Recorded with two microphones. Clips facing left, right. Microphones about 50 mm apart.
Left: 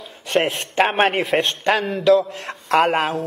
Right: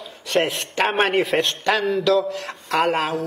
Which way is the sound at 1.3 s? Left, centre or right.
Centre.